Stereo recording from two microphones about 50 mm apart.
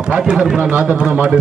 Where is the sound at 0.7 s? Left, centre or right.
Right.